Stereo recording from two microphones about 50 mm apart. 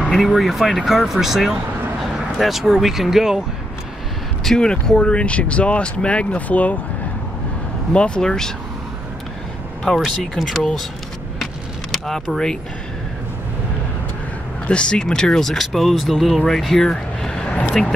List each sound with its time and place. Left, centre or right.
0.1 s speech: centre
4.6 s speech: centre; by 6.8 s left
7.9 s speech: centre
9.9 s speech: centre
11.9 s speech: centre
14.7 s speech: centre